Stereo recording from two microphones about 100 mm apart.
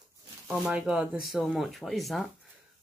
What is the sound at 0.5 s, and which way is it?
Speech, 5° right (ahead or behind).